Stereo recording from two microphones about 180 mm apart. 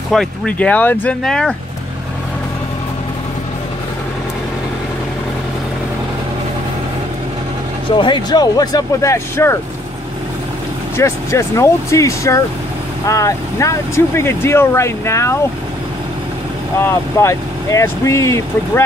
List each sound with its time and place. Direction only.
0.1 s speech: 5° left (ahead or behind)
8.0 s speech: 25° left (ahead or behind)
11.0 s speech: 15° left (ahead or behind)
16.7 s speech: 15° left (ahead or behind)